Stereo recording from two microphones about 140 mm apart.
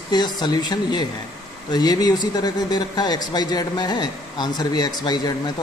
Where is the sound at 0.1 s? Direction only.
30° left (ahead or behind).